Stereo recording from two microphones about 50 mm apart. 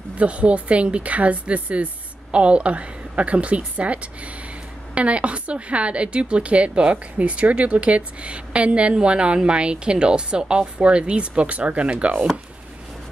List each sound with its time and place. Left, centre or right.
0.2 s a woman's voice: right